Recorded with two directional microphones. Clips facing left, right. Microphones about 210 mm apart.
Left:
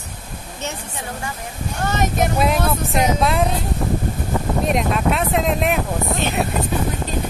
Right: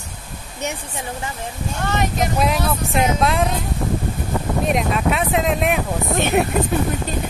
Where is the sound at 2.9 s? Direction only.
Centre (ahead or behind).